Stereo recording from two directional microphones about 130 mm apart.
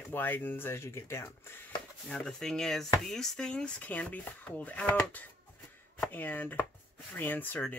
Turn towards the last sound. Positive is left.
turn(degrees=15)  # may be behind; listen again after turning